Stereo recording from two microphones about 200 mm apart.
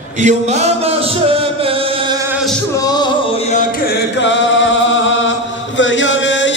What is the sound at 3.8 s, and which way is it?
Chant, 60° left (ahead or behind).